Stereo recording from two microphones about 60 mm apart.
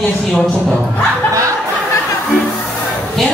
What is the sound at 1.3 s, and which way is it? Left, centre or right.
Laughter, right.